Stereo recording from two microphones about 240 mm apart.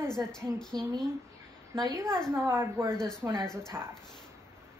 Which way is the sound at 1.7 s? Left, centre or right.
Centre.